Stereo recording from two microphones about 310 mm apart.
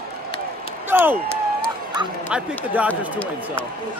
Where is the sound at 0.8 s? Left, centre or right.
Centre.